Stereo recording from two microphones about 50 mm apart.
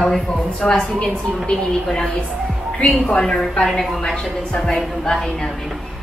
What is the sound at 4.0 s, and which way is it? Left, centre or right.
A woman's voice, centre.